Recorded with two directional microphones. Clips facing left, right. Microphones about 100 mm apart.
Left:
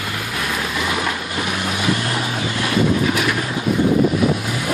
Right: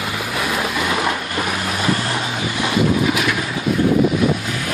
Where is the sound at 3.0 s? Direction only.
Centre (ahead or behind).